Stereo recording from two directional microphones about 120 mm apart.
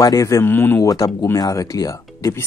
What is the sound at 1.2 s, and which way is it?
Speech, 30° left (ahead or behind).